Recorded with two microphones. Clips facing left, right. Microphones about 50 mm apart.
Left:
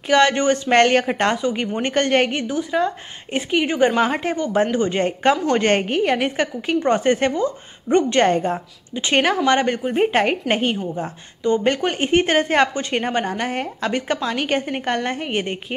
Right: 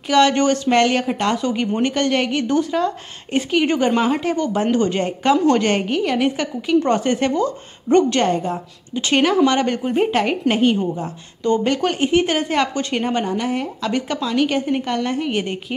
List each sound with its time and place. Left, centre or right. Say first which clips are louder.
0.1 s a woman's voice: right 1 dB; left
1.3 s speech: right 1 dB; left
1.8 s a woman's voice: left 3 dB; left
2.4 s a woman's voice: right 2 dB; centre
4.0 s a woman's voice: right 1 dB; left
5.0 s a woman's voice: right 2 dB; left
10.5 s a woman's voice: right 3 dB; left